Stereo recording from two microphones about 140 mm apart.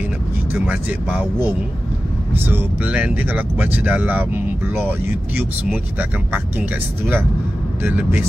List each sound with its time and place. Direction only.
0.5 s speech: 10° right (ahead or behind)